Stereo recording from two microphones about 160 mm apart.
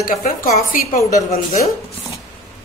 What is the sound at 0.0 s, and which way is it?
A woman's voice, 60° left (ahead or behind).